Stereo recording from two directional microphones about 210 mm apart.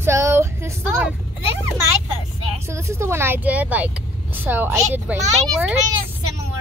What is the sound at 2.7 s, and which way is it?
A woman's voice, 15° right (ahead or behind).